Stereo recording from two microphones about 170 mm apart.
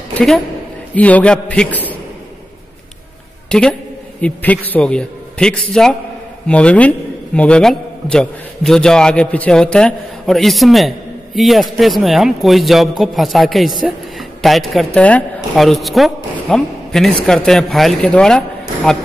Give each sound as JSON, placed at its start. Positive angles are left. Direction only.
{"t": 0.9, "sound": "a man's voice", "side_deg": 10}
{"t": 3.4, "sound": "a man's voice", "side_deg": 5}